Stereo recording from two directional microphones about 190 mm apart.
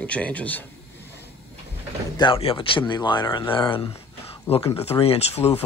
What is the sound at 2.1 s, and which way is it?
Speech, 25° left (ahead or behind).